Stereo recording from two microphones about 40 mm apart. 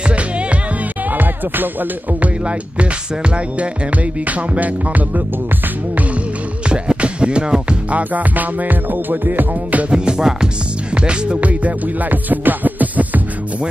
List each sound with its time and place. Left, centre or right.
0.0 s music: right
1.1 s music: right
2.2 s music: right
6.7 s music: right
7.9 s music: right
9.8 s music: right